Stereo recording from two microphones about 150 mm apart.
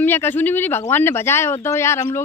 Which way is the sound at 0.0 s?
15° left (ahead or behind).